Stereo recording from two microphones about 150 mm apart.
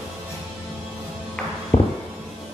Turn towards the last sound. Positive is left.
turn(degrees=45)  # may be behind; listen again after turning